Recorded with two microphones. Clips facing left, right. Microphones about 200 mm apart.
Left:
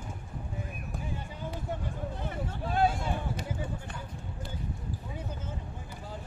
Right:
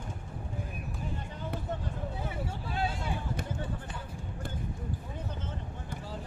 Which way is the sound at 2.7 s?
50° left (ahead or behind).